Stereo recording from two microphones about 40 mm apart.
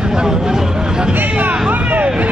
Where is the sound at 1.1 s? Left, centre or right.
Right.